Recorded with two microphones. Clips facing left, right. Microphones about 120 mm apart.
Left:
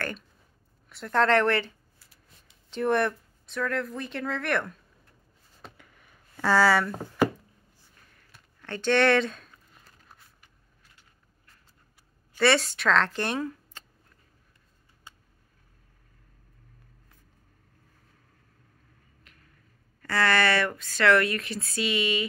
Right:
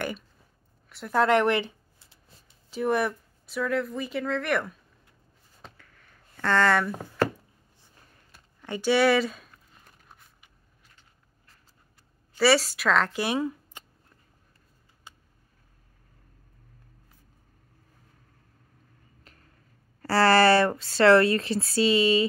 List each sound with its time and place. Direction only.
0.8 s a sound: 5° right (ahead or behind); by 2.3 s 25° right (ahead or behind)
2.7 s speech: 5° right (ahead or behind)
5.8 s a sound: 10° left (ahead or behind)
7.2 s knock: 10° left (ahead or behind)
8.5 s speech: 10° right (ahead or behind)
12.4 s speech: 5° right (ahead or behind)
20.0 s a woman's voice: 35° right (ahead or behind)